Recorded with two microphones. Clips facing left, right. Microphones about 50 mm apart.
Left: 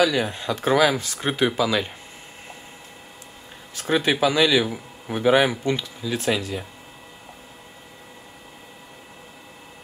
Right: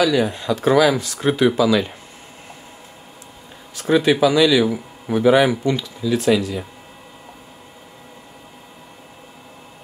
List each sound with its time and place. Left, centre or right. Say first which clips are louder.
0.0 s speech: right 3 dB; left
3.9 s speech: right 5 dB; left